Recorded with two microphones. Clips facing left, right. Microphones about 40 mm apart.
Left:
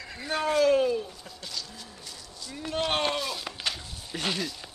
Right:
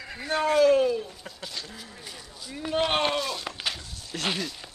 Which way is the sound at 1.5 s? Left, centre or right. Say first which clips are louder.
Left 2 dB; right.